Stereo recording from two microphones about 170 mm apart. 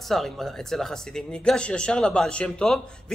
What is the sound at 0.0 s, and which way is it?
Speech, centre (ahead or behind).